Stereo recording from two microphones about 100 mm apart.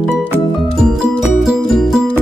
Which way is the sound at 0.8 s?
5° right (ahead or behind).